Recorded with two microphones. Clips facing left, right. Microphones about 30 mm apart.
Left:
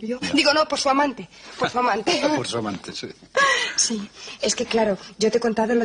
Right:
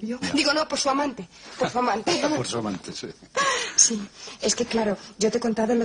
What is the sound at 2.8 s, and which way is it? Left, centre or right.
Speech, left.